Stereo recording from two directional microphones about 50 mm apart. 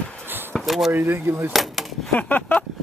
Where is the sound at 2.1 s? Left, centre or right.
Left.